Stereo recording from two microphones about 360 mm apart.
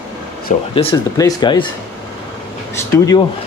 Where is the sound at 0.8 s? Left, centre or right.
Centre.